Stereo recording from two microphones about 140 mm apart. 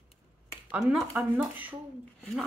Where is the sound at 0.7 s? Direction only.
5° right (ahead or behind).